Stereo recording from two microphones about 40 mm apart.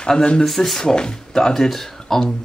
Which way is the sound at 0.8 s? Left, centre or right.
Centre.